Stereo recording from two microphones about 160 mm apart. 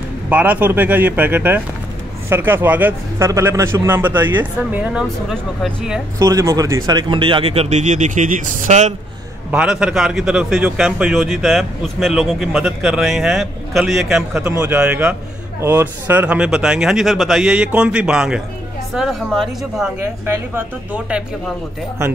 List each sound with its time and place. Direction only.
0.3 s a man's voice: 10° right (ahead or behind)
6.1 s speech: 20° right (ahead or behind); by 8.9 s 45° right (ahead or behind)
9.5 s a man's voice: 5° right (ahead or behind)
14.4 s a man's voice: 15° right (ahead or behind); by 19.9 s centre (ahead or behind)
20.0 s speech: 15° right (ahead or behind)